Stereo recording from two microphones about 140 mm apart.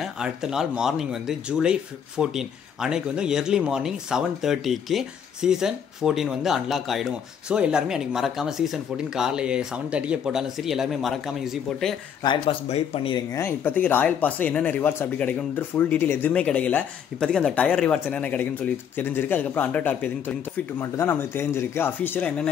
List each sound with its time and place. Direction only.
0.0 s speech: 5° right (ahead or behind)
12.2 s speech: 40° left (ahead or behind)
13.1 s speech: 20° left (ahead or behind)